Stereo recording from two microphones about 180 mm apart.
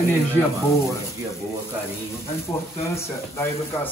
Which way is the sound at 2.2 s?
15° left (ahead or behind).